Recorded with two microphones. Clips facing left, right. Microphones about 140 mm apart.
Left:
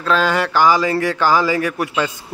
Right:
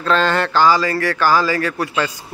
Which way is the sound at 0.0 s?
5° left (ahead or behind).